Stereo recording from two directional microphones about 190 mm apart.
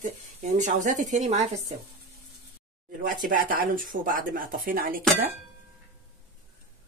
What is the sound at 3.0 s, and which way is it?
Speech, 45° right (ahead or behind).